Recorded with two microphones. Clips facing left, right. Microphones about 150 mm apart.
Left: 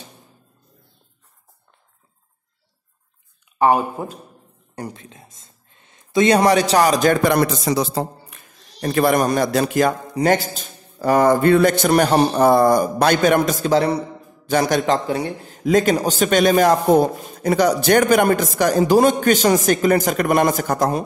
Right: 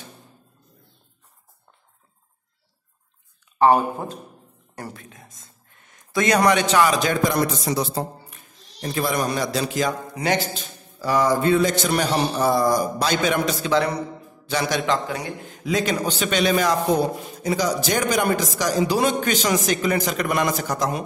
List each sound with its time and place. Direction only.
3.5 s speech: 10° left (ahead or behind)
4.7 s speech: 20° left (ahead or behind); by 9.9 s 55° left (ahead or behind)
10.1 s a man's voice: 45° left (ahead or behind)
14.4 s a man's voice: 45° left (ahead or behind)